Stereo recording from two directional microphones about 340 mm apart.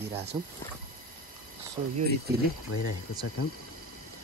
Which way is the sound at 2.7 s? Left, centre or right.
Left.